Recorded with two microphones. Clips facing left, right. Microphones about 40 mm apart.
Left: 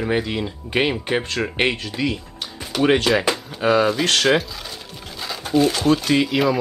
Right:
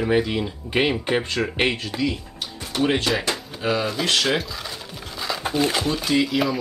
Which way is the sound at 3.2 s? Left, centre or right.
Left.